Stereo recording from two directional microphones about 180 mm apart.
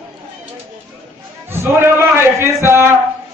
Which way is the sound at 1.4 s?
15° right (ahead or behind).